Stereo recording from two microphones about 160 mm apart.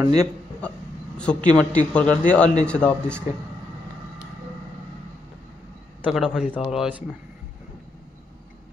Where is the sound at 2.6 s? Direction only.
5° left (ahead or behind).